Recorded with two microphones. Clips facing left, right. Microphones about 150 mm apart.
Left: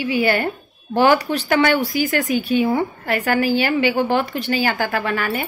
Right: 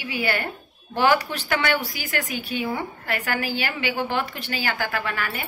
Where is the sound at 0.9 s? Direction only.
40° left (ahead or behind).